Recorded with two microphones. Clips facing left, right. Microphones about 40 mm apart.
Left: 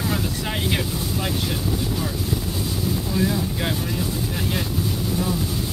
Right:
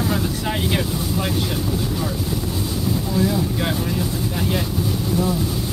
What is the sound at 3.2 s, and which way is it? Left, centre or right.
Speech, centre.